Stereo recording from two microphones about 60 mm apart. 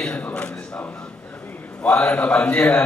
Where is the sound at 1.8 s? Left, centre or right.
Centre.